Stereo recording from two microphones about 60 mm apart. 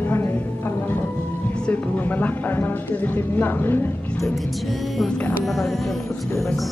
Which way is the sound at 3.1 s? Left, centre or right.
Left.